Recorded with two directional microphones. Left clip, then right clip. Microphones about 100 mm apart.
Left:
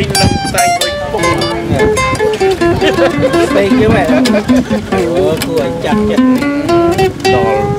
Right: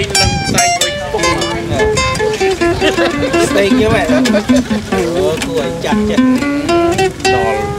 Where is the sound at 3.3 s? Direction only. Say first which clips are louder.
Left 2 dB; 10° right (ahead or behind).